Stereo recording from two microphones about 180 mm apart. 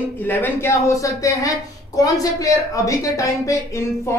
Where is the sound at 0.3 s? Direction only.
15° left (ahead or behind).